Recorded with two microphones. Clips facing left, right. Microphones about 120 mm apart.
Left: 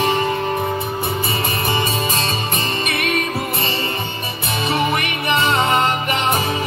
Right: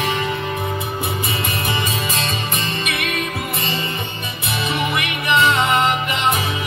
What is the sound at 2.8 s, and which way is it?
Music, 45° left (ahead or behind).